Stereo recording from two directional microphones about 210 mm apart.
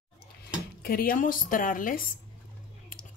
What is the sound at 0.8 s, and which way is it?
Speech, 45° left (ahead or behind).